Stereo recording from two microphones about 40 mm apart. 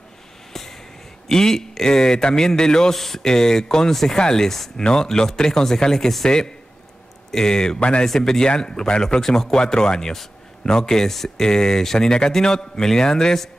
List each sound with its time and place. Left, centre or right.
0.5 s vehicle: centre
1.3 s speech: centre